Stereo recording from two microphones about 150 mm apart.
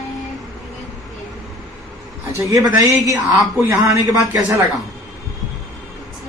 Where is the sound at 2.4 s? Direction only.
20° right (ahead or behind).